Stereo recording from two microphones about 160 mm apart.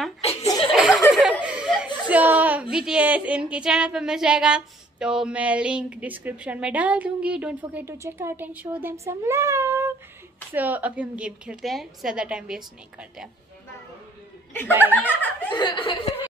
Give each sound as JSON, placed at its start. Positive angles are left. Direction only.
{"t": 0.2, "sound": "chuckle", "side_deg": 40}
{"t": 0.7, "sound": "a sound", "side_deg": -5}
{"t": 1.4, "sound": "chuckle", "side_deg": -5}
{"t": 2.0, "sound": "a sound", "side_deg": -10}
{"t": 2.7, "sound": "a woman's voice", "side_deg": -5}
{"t": 15.0, "sound": "chuckle", "side_deg": 10}
{"t": 15.5, "sound": "speech", "side_deg": 30}